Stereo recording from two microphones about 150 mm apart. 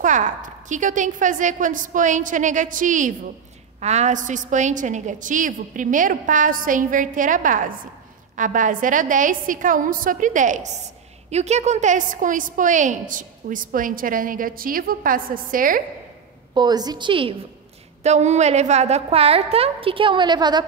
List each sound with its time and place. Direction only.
0.0 s a woman's voice: 55° right (ahead or behind)
3.8 s a woman's voice: 50° right (ahead or behind); by 15.8 s 65° right (ahead or behind)
16.5 s a woman's voice: 25° right (ahead or behind)
18.0 s a woman's voice: 50° right (ahead or behind); by 20.6 s 30° right (ahead or behind)